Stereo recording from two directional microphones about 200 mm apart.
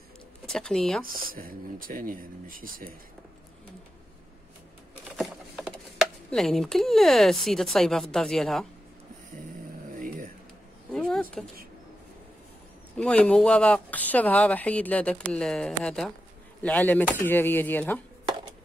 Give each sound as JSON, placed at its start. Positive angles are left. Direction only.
{"t": 0.5, "sound": "speech", "side_deg": 5}
{"t": 1.3, "sound": "speech", "side_deg": -45}
{"t": 5.1, "sound": "speech", "side_deg": 0}
{"t": 9.9, "sound": "a sound", "side_deg": -45}
{"t": 10.9, "sound": "a sound", "side_deg": 5}
{"t": 12.9, "sound": "speech", "side_deg": 5}